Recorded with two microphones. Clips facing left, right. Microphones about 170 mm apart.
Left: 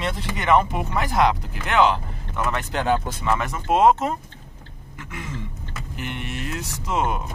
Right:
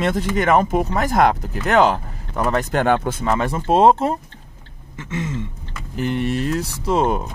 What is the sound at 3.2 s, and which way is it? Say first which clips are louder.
Speech: right 3 dB; 30° right (ahead or behind).